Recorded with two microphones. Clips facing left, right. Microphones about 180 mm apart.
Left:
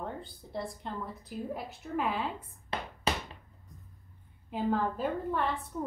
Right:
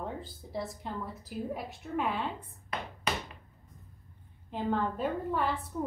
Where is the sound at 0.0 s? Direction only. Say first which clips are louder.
Right 1 dB; centre (ahead or behind).